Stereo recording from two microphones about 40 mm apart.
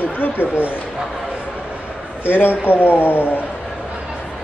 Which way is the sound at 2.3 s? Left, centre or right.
Left.